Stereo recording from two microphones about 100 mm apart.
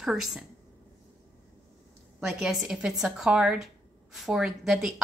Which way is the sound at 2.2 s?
5° right (ahead or behind).